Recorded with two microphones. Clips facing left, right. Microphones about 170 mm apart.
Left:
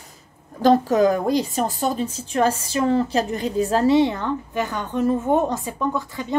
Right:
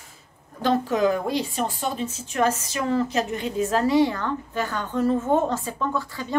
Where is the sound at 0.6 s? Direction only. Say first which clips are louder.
Left 5 dB; 40° left (ahead or behind).